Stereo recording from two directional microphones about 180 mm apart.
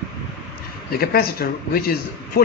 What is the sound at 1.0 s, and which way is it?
A man's voice, 55° left (ahead or behind).